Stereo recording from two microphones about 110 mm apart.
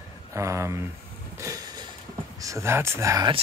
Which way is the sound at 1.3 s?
30° right (ahead or behind).